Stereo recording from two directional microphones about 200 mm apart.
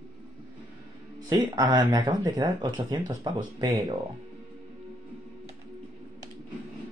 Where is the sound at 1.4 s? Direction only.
15° right (ahead or behind).